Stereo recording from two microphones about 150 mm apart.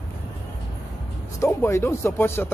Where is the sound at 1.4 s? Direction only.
20° left (ahead or behind).